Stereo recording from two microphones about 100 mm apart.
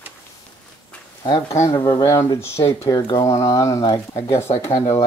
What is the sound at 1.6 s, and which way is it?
Speech, 30° left (ahead or behind).